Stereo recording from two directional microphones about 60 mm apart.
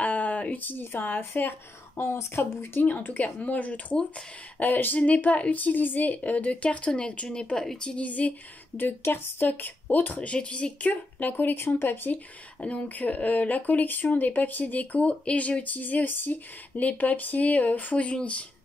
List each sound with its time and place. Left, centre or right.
0.0 s speech: left
8.8 s a woman's voice: left
12.5 s speech: left